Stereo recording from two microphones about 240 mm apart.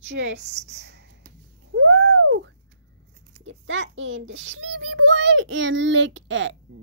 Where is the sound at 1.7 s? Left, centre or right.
Right.